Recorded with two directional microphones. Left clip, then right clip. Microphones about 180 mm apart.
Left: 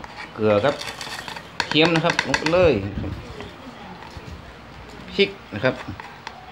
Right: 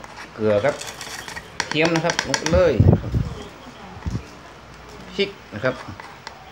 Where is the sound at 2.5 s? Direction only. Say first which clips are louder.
Even; 20° left (ahead or behind).